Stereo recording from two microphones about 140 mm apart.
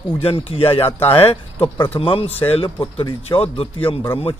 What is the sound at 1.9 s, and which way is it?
Speech, 40° left (ahead or behind).